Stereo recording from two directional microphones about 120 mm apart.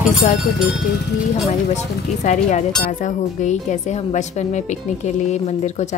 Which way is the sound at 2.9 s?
90° left.